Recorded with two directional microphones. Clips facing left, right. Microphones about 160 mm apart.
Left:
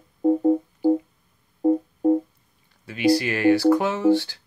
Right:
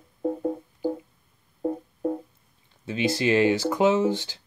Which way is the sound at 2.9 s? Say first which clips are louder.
Left 3 dB; 25° right (ahead or behind).